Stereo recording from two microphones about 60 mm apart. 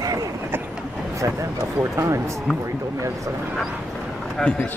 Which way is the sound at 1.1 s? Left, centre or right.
Right.